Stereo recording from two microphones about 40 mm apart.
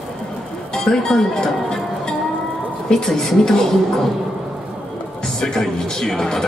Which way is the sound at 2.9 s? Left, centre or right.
Centre.